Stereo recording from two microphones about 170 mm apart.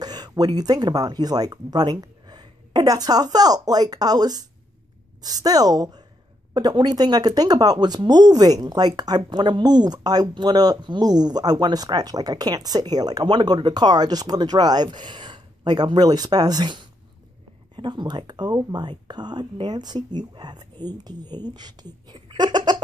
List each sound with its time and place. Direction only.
0.0 s speech: 25° right (ahead or behind)